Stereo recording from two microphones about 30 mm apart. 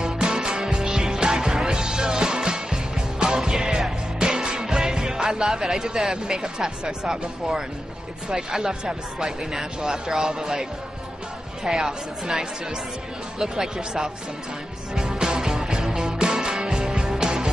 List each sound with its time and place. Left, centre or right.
0.0 s music: right
8.3 s speech: right
15.0 s music: right